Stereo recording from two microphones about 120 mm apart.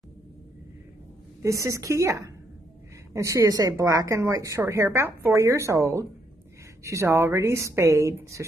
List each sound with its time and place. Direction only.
1.4 s a woman's voice: 25° right (ahead or behind)